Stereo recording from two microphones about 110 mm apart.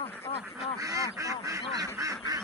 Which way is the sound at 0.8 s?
30° right (ahead or behind).